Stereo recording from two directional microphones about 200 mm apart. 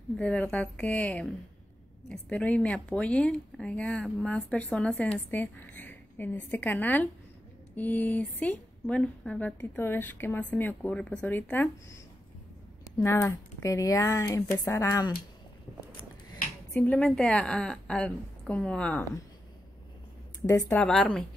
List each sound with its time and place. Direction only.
0.2 s a woman's voice: 5° left (ahead or behind)
16.7 s speech: 5° left (ahead or behind)
20.4 s speech: 15° left (ahead or behind)